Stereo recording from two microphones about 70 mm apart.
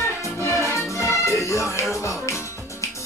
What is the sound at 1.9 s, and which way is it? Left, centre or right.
Speech, left.